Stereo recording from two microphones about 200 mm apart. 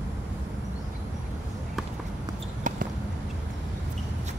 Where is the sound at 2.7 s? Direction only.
40° right (ahead or behind).